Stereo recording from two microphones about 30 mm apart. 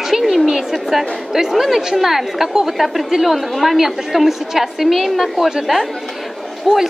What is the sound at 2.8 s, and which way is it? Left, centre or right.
A woman's voice, centre.